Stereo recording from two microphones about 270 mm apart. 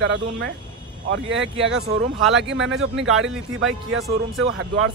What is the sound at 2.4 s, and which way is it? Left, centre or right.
Speech, right.